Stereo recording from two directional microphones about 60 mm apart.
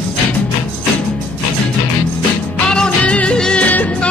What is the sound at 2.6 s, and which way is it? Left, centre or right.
Music, centre.